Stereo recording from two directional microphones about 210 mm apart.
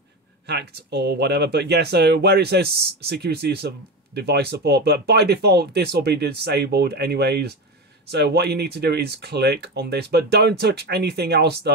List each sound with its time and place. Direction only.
0.5 s speech: 55° right (ahead or behind)